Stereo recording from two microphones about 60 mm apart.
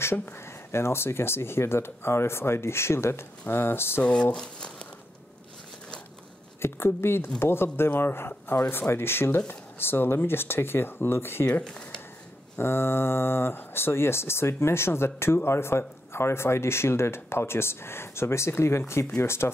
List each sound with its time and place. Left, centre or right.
0.0 s speech: left
4.0 s speech: centre
6.6 s speech: left
12.5 s speech: left